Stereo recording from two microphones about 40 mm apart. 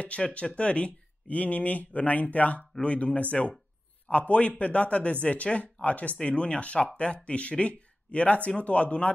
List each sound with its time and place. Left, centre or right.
0.0 s speech: left